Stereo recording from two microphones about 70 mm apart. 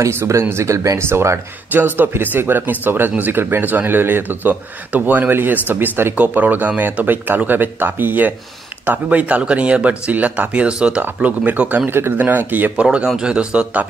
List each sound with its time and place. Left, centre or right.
0.0 s speech: right
1.7 s speech: right
11.9 s speech: right
12.8 s speech: centre